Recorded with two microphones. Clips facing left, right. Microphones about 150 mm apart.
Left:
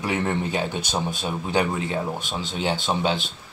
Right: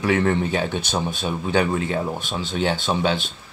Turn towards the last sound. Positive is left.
turn(degrees=15)  # may be behind; listen again after turning